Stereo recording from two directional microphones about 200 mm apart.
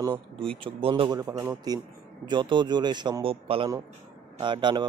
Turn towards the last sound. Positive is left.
turn(degrees=-25)  # may be behind; listen again after turning